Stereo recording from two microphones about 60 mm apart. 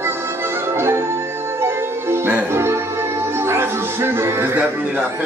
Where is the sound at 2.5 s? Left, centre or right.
Right.